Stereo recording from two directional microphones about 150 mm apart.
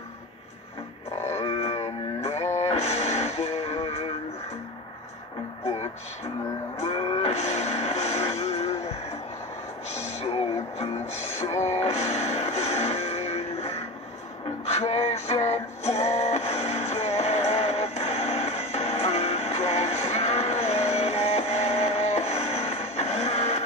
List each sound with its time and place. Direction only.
1.3 s music: 40° left (ahead or behind)
6.8 s music: 45° left (ahead or behind)
11.4 s music: 50° left (ahead or behind)
14.7 s music: 45° left (ahead or behind)